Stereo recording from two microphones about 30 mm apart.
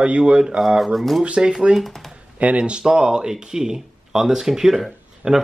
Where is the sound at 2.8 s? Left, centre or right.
Right.